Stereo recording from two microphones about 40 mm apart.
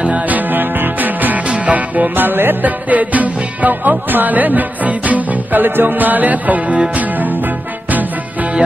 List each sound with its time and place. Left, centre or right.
0.0 s music: right
2.6 s music: right